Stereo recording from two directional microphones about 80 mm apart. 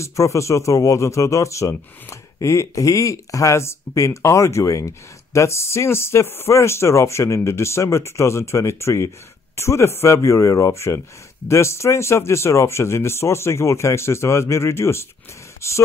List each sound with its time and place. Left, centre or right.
0.0 s speech: left